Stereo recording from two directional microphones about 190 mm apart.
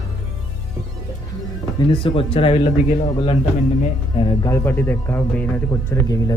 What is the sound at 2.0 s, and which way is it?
Speech, 25° left (ahead or behind).